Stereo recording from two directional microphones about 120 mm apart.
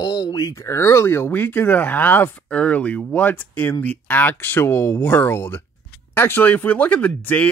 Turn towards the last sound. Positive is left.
turn(degrees=15)  # may be behind; listen again after turning